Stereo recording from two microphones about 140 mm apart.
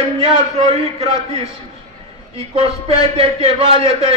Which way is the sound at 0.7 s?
45° right (ahead or behind).